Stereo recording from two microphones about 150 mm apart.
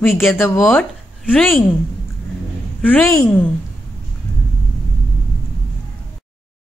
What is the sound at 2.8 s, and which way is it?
Speech, 15° left (ahead or behind).